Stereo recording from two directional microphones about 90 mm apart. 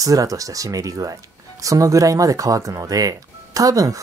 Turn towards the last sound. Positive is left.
turn(degrees=-40)  # may be behind; listen again after turning